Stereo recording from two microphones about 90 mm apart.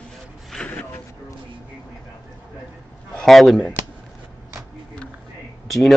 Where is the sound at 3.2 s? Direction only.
Centre (ahead or behind).